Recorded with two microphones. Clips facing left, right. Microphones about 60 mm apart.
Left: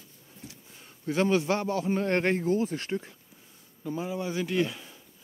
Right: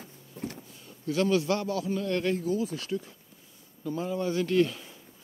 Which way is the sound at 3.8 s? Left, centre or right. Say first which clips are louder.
Right 2 dB; centre.